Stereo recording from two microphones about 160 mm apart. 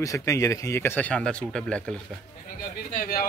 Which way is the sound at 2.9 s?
65° left (ahead or behind).